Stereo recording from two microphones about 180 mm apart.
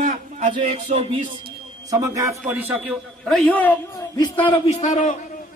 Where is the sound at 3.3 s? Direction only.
5° left (ahead or behind).